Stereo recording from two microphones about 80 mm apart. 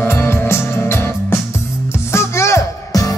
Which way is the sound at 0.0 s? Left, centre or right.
Left.